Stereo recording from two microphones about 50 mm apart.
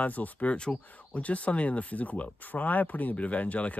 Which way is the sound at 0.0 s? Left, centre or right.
Left.